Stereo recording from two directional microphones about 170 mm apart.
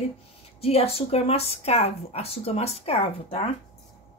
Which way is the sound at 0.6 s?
35° left (ahead or behind).